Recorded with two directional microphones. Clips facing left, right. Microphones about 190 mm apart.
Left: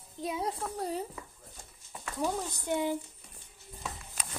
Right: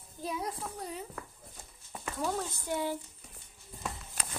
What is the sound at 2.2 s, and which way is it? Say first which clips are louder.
Speech: left 2 dB; 15° left (ahead or behind).